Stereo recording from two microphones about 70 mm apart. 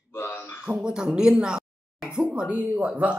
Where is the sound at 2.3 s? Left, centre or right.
Right.